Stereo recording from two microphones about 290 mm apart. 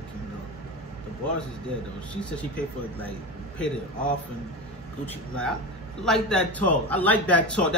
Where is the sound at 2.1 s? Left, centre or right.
Centre.